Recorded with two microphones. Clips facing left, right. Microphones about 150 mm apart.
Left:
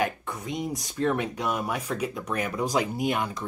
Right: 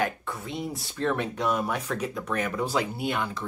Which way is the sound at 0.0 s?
15° left (ahead or behind).